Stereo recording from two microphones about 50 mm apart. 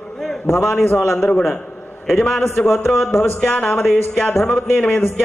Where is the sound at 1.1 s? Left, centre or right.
Centre.